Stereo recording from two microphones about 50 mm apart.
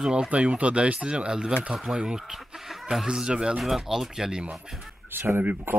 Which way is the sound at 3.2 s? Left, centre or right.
Centre.